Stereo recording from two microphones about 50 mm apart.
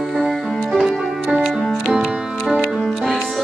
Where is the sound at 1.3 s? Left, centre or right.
Centre.